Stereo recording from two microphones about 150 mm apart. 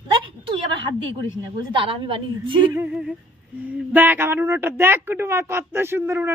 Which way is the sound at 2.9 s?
5° right (ahead or behind).